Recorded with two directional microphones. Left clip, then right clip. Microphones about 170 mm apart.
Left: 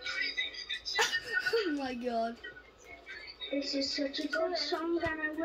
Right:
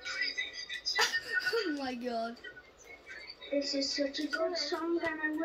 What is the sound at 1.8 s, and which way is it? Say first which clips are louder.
Speech: left 2 dB; 30° left (ahead or behind).